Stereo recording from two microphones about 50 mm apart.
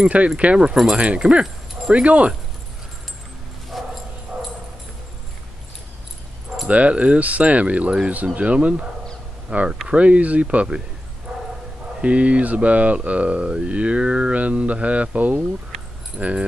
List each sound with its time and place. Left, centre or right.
0.0 s speech: right
3.7 s bow-wow: centre
6.7 s speech: right
12.0 s speech: right